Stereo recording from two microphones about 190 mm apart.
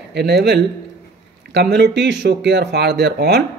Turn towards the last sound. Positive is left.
turn(degrees=-60)  # may be behind; listen again after turning